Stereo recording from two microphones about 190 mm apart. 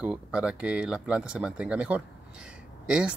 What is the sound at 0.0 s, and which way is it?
Speech, 5° right (ahead or behind).